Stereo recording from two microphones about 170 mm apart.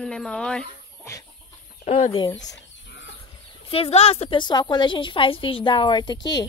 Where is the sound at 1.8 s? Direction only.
40° left (ahead or behind).